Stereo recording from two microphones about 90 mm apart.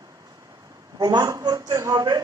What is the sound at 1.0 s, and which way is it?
A woman's voice, 45° right (ahead or behind).